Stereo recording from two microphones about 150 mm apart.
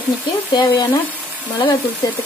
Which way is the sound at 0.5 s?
30° left (ahead or behind).